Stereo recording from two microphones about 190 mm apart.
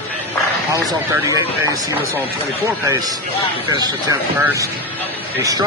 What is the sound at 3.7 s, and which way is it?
Speech, 20° right (ahead or behind).